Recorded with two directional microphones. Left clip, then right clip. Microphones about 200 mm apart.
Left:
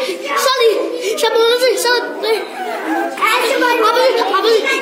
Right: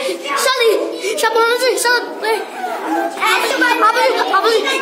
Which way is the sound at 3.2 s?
15° right (ahead or behind).